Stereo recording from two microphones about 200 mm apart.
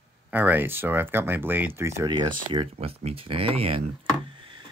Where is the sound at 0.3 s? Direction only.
10° right (ahead or behind); by 3.8 s 30° right (ahead or behind).